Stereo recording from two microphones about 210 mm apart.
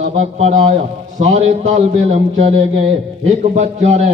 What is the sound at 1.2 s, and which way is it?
Mantra, 30° right (ahead or behind).